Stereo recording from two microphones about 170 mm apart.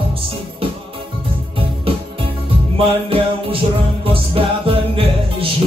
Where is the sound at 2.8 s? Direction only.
35° right (ahead or behind).